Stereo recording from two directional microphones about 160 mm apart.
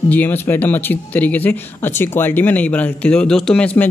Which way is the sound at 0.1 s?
10° left (ahead or behind).